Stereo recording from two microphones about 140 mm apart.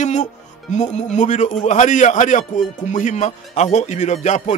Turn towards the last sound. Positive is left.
turn(degrees=55)  # may be behind; listen again after turning